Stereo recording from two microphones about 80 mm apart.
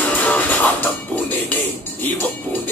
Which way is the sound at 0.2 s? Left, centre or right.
Centre.